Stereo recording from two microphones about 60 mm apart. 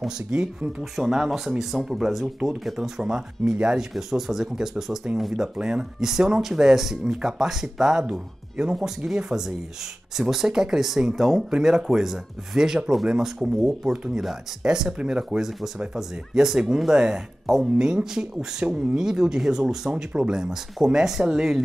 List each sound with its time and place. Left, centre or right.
0.3 s speech: centre